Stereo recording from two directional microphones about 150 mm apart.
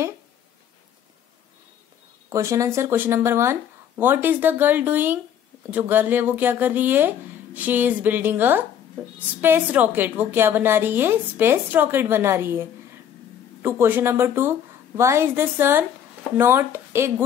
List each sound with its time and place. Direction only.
2.2 s a woman's voice: 20° right (ahead or behind)